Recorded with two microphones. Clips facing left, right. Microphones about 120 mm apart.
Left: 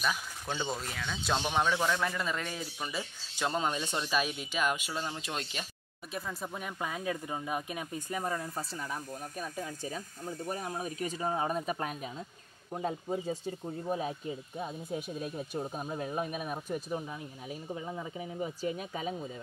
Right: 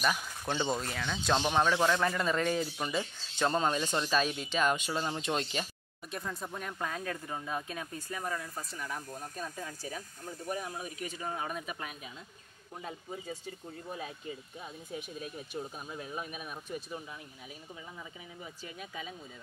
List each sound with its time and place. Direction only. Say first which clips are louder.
0.0 s speech: right 2 dB; centre (ahead or behind)
10.5 s speech: even; 35° left (ahead or behind)
14.6 s speech: left 6 dB; 35° left (ahead or behind)